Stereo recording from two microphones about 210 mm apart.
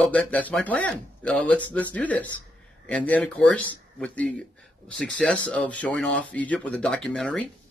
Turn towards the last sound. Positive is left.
turn(degrees=5)  # may be behind; listen again after turning